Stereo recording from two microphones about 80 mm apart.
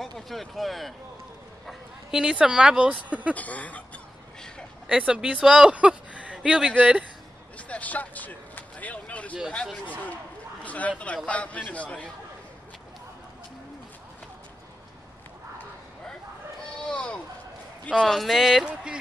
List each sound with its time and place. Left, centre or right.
0.0 s speech: centre
3.3 s speech: centre
4.8 s speech: centre
7.5 s vehicle: centre
10.6 s a man's voice: centre
16.9 s a sound: centre
18.0 s speech: centre